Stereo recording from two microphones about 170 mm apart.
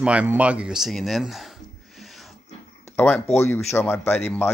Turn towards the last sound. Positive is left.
turn(degrees=10)  # may be behind; listen again after turning